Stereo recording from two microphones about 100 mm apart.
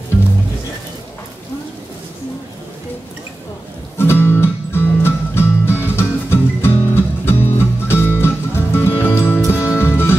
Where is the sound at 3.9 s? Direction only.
25° left (ahead or behind).